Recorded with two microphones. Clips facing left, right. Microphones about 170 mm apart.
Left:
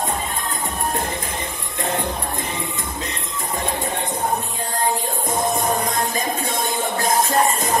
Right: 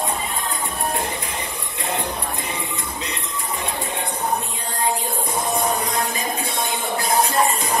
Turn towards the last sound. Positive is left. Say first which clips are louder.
# left 1 dB
turn(degrees=45)  # may be behind; listen again after turning